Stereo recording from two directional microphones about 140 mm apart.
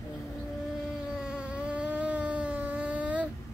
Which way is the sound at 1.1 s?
5° right (ahead or behind).